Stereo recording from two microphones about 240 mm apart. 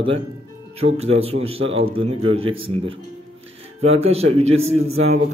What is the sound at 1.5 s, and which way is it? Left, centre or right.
Speech, right.